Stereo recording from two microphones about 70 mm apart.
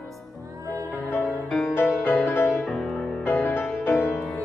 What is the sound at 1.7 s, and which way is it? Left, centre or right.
Music, left.